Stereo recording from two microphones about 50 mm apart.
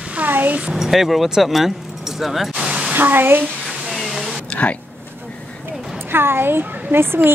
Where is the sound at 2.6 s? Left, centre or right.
Centre.